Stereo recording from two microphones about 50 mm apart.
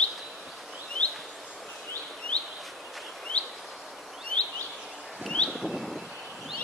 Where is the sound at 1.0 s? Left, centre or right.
Centre.